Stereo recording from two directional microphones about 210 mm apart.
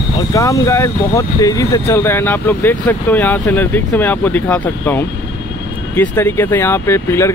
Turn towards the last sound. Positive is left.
turn(degrees=15)  # may be behind; listen again after turning